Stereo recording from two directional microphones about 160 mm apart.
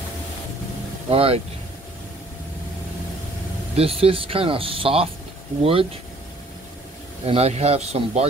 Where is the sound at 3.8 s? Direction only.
35° right (ahead or behind).